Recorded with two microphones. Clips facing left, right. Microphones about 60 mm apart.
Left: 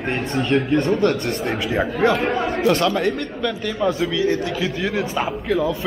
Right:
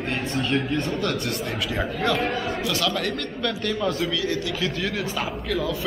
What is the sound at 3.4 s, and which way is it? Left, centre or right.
Speech, centre.